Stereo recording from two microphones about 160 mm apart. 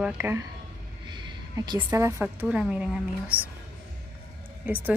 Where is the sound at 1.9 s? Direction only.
15° right (ahead or behind).